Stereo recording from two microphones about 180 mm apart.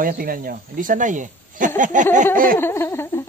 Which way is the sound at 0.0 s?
50° right (ahead or behind).